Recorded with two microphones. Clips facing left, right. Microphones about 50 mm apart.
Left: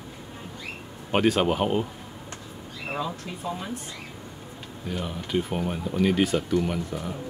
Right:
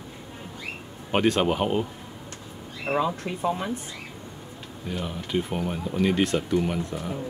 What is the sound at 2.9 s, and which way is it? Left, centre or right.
Speech, centre.